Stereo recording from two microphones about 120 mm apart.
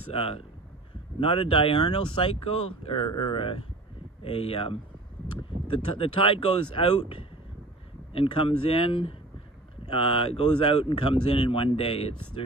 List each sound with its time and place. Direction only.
0.1 s speech: 50° left (ahead or behind)